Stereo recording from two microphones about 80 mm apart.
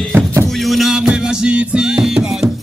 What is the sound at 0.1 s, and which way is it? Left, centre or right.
Music, right.